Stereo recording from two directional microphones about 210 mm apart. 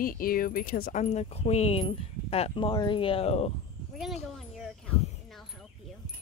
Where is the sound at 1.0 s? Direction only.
30° left (ahead or behind).